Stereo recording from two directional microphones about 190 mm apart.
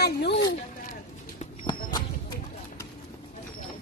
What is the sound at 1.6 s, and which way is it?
Horse, 20° left (ahead or behind).